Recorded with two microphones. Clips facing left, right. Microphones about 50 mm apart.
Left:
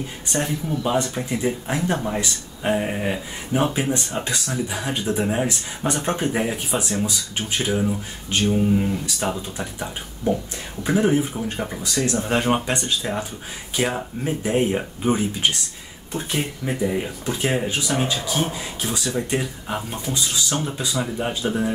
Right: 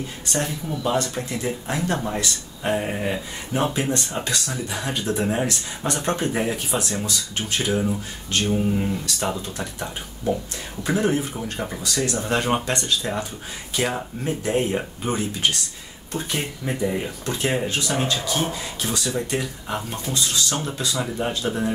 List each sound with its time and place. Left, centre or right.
0.3 s speech: centre
11.9 s speech: centre
16.2 s speech: centre